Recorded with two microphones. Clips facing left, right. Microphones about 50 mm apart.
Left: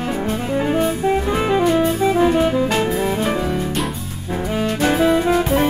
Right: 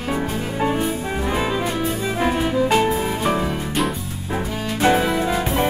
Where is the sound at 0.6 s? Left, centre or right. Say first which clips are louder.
Left 2 dB; centre.